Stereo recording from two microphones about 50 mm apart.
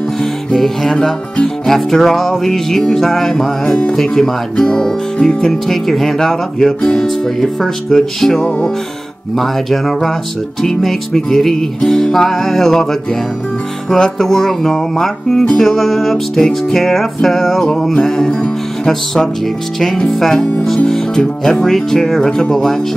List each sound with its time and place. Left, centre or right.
0.2 s music: centre
3.6 s speech: centre
3.9 s music: centre
4.6 s music: centre
8.4 s music: left
9.4 s music: centre
13.8 s music: centre
20.1 s music: centre